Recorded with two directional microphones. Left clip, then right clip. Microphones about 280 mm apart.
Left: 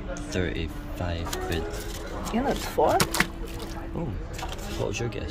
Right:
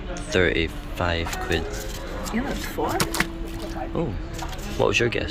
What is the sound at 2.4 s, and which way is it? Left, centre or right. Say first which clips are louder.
Speech: left 3 dB; left.